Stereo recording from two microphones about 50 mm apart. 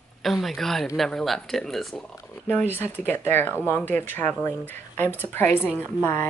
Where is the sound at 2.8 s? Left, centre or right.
Left.